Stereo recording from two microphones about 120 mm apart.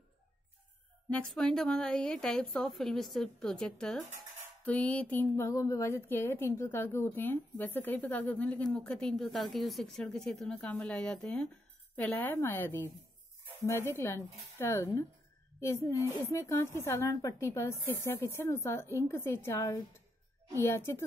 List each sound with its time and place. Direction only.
1.1 s a woman's voice: 10° left (ahead or behind)